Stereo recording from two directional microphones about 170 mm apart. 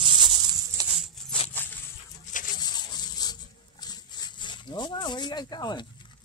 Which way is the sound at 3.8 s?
25° left (ahead or behind).